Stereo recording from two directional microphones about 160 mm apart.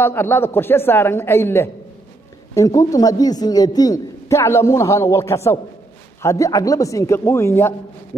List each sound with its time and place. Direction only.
0.0 s a woman's voice: 15° left (ahead or behind)